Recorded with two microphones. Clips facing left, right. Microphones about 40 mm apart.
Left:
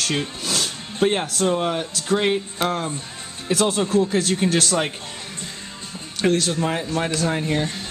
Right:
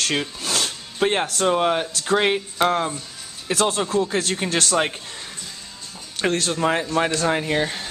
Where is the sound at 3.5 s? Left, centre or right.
Centre.